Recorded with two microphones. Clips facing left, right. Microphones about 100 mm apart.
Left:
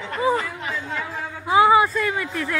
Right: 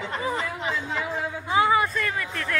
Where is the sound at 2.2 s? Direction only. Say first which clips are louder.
Left 4 dB; 20° left (ahead or behind).